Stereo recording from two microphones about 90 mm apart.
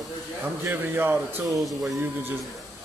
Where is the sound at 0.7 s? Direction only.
25° right (ahead or behind).